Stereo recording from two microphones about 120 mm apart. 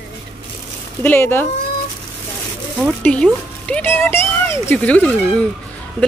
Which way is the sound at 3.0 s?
10° left (ahead or behind).